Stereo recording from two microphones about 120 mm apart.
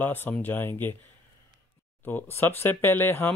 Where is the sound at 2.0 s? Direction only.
20° left (ahead or behind).